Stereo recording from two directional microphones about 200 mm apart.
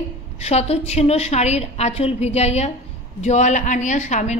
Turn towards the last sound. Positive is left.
turn(degrees=35)  # may be behind; listen again after turning